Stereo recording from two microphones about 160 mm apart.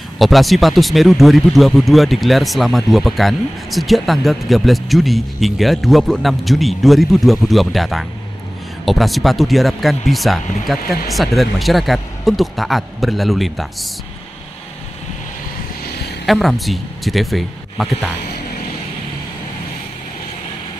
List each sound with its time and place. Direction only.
0.2 s speech: centre (ahead or behind)
16.3 s speech: centre (ahead or behind)